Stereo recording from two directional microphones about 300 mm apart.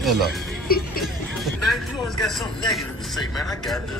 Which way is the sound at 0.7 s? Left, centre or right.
Left.